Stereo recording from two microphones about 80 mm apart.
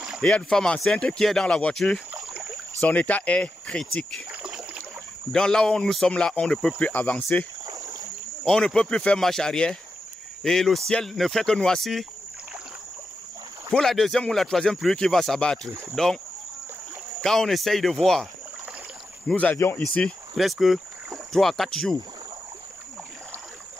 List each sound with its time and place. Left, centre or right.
0.2 s speech: centre
4.3 s rowboat: centre
5.3 s speech: centre
8.5 s speech: centre
13.7 s speech: centre
17.2 s speech: centre
19.3 s speech: centre
20.3 s speech: centre